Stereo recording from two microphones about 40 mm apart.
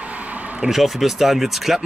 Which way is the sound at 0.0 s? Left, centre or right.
Right.